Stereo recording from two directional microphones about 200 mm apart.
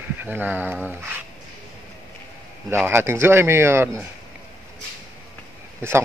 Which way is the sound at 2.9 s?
10° right (ahead or behind).